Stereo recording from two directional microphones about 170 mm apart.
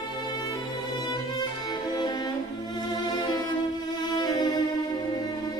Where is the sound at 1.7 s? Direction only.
25° left (ahead or behind).